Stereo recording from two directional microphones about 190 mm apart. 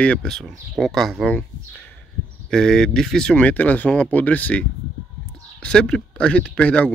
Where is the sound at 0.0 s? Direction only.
5° left (ahead or behind).